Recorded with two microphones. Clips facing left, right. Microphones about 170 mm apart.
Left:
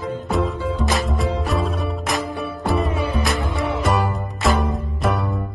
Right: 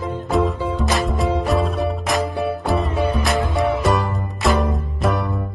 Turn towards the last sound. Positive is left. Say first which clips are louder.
# right 1 dB
turn(degrees=0)  # may be behind; listen again after turning